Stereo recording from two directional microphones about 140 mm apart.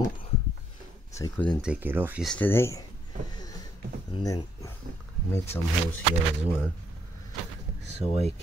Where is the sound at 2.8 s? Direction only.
30° left (ahead or behind).